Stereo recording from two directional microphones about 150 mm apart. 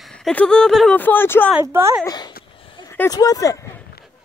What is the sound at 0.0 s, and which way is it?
Speech, 5° left (ahead or behind).